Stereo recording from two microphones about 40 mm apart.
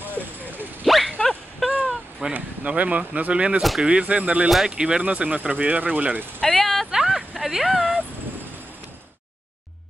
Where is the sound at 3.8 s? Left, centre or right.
Right.